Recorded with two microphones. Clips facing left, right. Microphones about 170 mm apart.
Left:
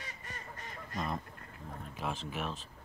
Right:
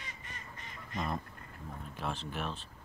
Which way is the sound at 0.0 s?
45° left (ahead or behind).